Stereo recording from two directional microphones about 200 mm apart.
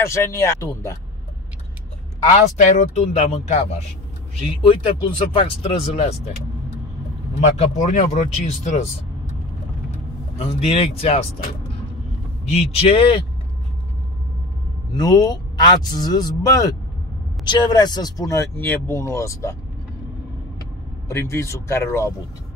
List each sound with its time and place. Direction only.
0.0 s speech: 15° left (ahead or behind)
2.2 s speech: 35° left (ahead or behind)
7.3 s speech: 35° left (ahead or behind)
10.4 s speech: 30° left (ahead or behind)
12.5 s speech: 30° left (ahead or behind)
15.0 s speech: 20° left (ahead or behind)
21.1 s speech: 15° left (ahead or behind)